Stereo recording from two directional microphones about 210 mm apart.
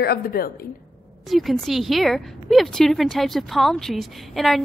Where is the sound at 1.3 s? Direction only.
Centre (ahead or behind).